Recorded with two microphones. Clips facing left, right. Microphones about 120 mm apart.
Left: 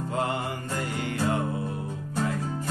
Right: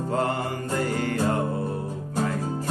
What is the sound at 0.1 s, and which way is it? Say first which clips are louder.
Music: right 3 dB; 40° right (ahead or behind).